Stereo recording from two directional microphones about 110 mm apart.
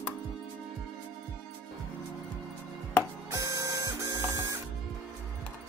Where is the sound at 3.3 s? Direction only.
30° right (ahead or behind).